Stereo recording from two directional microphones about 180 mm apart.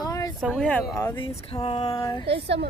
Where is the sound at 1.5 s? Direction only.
30° left (ahead or behind).